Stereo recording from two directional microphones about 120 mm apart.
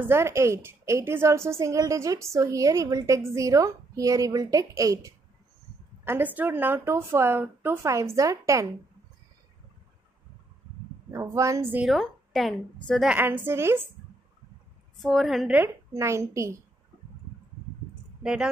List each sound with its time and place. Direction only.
0.1 s a woman's voice: 25° right (ahead or behind)
6.0 s a woman's voice: 15° right (ahead or behind)
11.1 s a woman's voice: 25° right (ahead or behind)
11.9 s a woman's voice: centre (ahead or behind)
13.1 s a woman's voice: 15° right (ahead or behind)
15.0 s a woman's voice: centre (ahead or behind)
15.5 s a woman's voice: 20° right (ahead or behind)
18.2 s speech: 5° right (ahead or behind)